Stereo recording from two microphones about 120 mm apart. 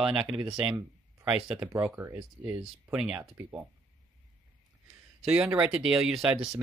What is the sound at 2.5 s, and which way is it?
Speech, 10° right (ahead or behind).